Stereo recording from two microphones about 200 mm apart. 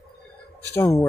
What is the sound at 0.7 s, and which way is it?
Speech, 15° left (ahead or behind).